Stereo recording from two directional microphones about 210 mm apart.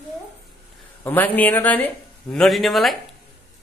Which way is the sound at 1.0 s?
10° left (ahead or behind).